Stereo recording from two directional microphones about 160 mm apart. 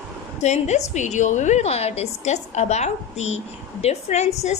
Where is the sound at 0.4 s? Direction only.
45° left (ahead or behind).